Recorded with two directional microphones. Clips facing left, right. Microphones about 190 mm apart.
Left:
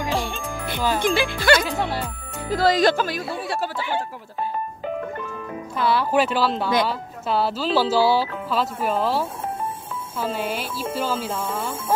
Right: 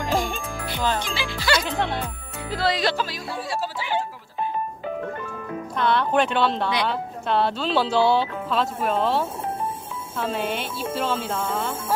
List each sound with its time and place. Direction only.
1.0 s speech: 55° left (ahead or behind)
1.7 s speech: 5° left (ahead or behind)
2.5 s speech: 45° left (ahead or behind)
5.8 s speech: 5° left (ahead or behind)